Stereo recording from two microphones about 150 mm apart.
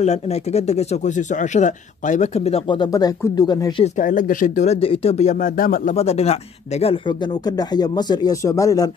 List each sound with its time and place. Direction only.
0.0 s speech: 45° left (ahead or behind)
2.7 s speech: 30° left (ahead or behind)
4.0 s speech: 65° left (ahead or behind)
4.6 s speech: 40° left (ahead or behind); by 5.9 s 65° left (ahead or behind)
5.9 s speech: 45° left (ahead or behind)
7.4 s speech: 25° left (ahead or behind)